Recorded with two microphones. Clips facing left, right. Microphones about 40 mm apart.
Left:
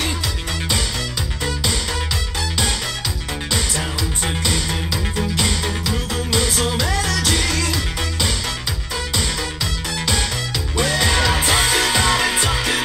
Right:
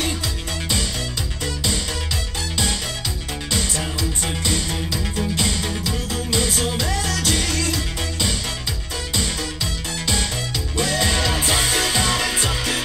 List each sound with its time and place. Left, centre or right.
1.4 s music: left
3.5 s music: left
10.8 s music: left